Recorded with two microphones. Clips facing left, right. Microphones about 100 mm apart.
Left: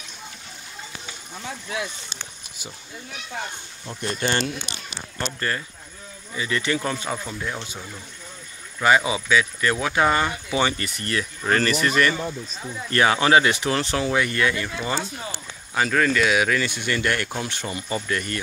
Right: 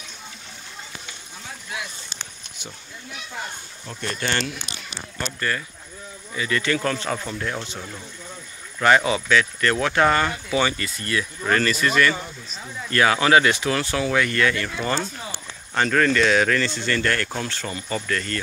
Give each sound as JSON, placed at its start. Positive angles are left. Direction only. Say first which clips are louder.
{"t": 4.0, "sound": "speech", "louder": "left 2 dB", "side_deg": 25}
{"t": 8.7, "sound": "speech", "louder": "right 1 dB", "side_deg": 10}